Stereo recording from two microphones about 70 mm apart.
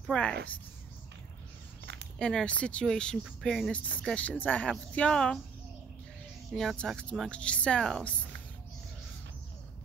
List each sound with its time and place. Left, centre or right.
0.1 s speech: centre
2.1 s speech: centre
3.4 s speech: centre
4.0 s speech: centre
6.5 s speech: centre
7.0 s speech: centre